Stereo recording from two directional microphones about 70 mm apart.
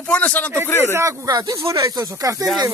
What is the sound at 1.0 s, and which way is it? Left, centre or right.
Speech, right.